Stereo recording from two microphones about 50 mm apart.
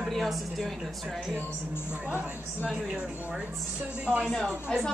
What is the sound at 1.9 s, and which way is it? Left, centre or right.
Speech, right.